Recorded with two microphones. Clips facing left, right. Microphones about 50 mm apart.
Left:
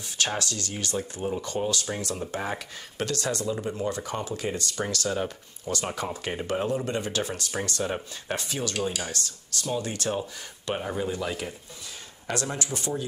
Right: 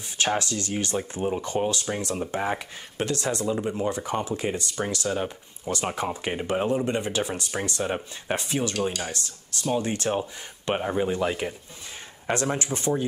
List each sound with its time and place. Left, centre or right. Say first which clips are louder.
0.2 s speech: right 4 dB; right